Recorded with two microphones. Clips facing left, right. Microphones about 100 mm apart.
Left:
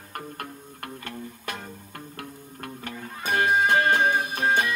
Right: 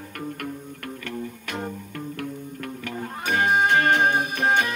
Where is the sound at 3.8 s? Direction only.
55° right (ahead or behind).